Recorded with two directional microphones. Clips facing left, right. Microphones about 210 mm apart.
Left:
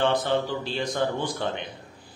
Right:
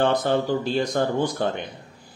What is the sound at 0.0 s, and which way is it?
Speech, 45° right (ahead or behind).